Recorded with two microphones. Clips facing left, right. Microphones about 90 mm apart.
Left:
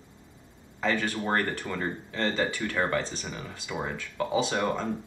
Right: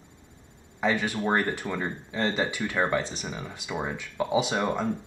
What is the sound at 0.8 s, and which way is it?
Speech, 15° right (ahead or behind).